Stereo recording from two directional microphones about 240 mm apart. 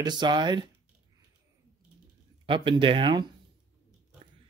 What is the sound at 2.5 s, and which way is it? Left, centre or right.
Speech, right.